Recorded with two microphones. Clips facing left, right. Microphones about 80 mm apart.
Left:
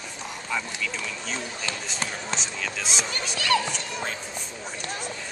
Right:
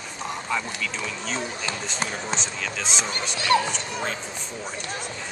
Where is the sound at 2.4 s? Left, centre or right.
Centre.